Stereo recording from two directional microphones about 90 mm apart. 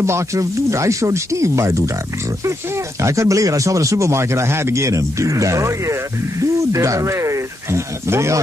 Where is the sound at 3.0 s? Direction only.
35° right (ahead or behind).